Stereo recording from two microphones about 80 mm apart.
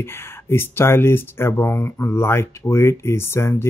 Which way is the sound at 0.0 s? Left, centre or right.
Left.